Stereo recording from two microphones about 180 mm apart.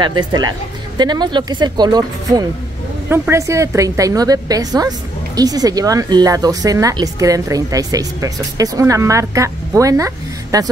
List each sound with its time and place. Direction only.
0.0 s a woman's voice: 25° right (ahead or behind)